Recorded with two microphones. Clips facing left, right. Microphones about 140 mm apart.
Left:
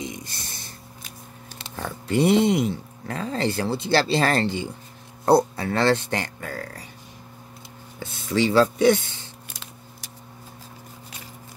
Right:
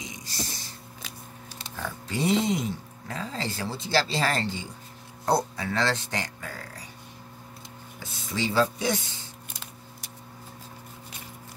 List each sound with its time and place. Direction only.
0.0 s a sound: 55° left (ahead or behind)
1.6 s speech: 65° left (ahead or behind)
8.0 s speech: 65° left (ahead or behind)